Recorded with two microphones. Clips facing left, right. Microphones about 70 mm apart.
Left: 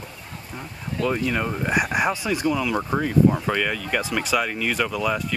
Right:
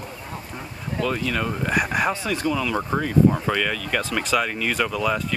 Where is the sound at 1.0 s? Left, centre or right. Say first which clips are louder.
Left 1 dB; centre.